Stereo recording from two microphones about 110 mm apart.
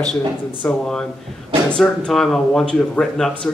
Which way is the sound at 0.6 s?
5° left (ahead or behind).